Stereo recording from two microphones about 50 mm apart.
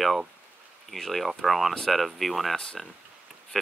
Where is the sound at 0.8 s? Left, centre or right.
Centre.